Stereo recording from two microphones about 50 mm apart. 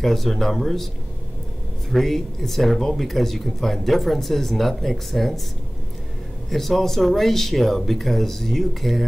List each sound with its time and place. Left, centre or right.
0.0 s speech: centre
1.9 s speech: centre
6.5 s speech: centre